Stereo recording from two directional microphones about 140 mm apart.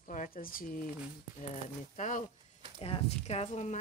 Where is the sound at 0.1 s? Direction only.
80° left.